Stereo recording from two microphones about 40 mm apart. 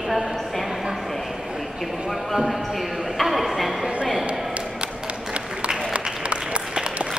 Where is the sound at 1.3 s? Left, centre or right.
Centre.